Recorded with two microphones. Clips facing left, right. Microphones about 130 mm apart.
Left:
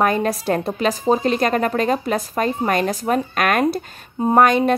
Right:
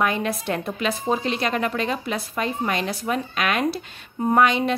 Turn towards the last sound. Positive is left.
turn(degrees=45)  # may be behind; listen again after turning